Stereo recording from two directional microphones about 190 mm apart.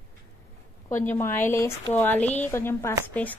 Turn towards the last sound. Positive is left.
turn(degrees=10)  # may be behind; listen again after turning